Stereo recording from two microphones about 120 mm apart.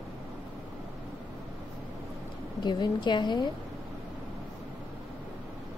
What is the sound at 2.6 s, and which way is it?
Speech, 40° left (ahead or behind).